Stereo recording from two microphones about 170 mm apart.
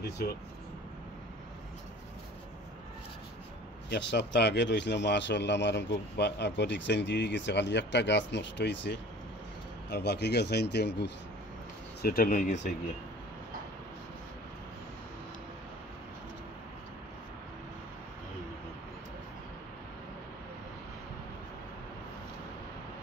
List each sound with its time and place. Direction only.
3.9 s speech: 90° left
9.8 s speech: 80° left
12.0 s speech: 60° left (ahead or behind)